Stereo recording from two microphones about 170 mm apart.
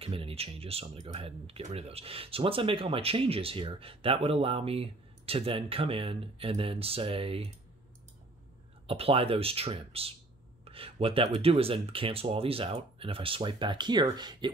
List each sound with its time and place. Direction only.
0.0 s speech: 35° right (ahead or behind)
8.8 s speech: 35° right (ahead or behind)